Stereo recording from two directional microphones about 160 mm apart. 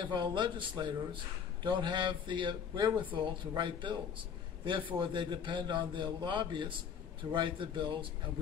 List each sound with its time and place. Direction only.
0.0 s a man's voice: 30° right (ahead or behind)